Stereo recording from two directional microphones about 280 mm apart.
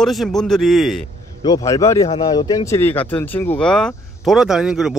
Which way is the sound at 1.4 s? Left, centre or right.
Centre.